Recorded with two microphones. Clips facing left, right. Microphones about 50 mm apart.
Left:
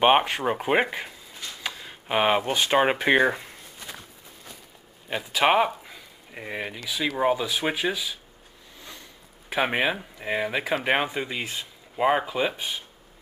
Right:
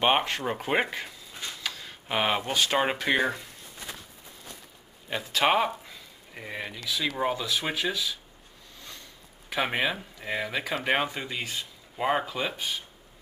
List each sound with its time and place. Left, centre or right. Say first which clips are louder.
0.0 s speech: left 5 dB; centre
5.1 s speech: left 3 dB; centre
9.5 s speech: left 3 dB; centre